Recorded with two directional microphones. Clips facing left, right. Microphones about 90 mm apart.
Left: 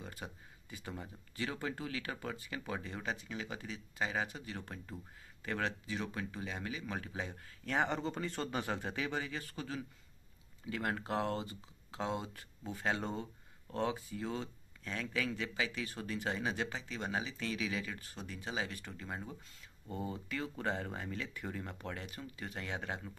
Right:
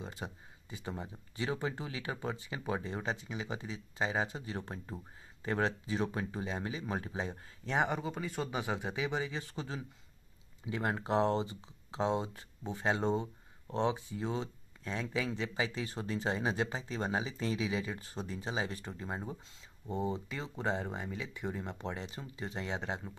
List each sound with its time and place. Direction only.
0.0 s speech: 25° right (ahead or behind)
8.0 s speech: 5° right (ahead or behind); by 23.1 s 20° right (ahead or behind)